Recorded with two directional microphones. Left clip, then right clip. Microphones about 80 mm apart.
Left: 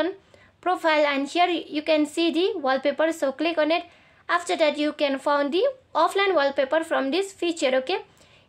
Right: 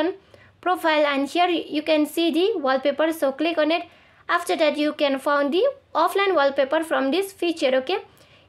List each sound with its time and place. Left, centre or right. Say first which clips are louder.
0.7 s a woman's voice: right 1 dB; right